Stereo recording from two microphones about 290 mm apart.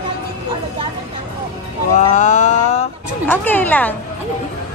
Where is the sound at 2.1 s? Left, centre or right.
Left.